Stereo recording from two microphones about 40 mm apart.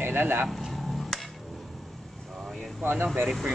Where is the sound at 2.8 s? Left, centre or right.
Right.